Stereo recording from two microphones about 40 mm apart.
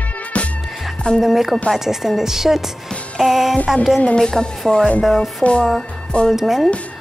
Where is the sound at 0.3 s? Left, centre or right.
Left.